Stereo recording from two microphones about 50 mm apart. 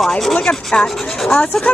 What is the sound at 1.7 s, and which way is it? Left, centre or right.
Speech, left.